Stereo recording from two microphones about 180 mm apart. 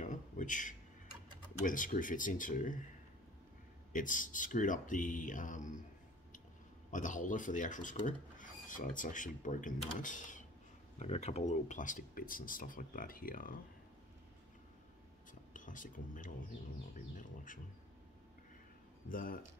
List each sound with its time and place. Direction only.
0.0 s a sound: 45° left (ahead or behind)
1.7 s speech: 45° left (ahead or behind)
3.9 s speech: 45° left (ahead or behind)
6.9 s speech: 45° left (ahead or behind)
15.5 s speech: 45° left (ahead or behind)
19.0 s speech: 50° left (ahead or behind)